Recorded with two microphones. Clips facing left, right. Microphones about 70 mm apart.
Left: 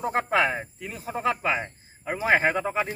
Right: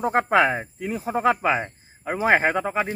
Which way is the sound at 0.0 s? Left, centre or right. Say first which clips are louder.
Right 4 dB; centre.